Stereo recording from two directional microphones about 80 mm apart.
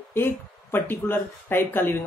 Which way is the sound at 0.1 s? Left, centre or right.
Left.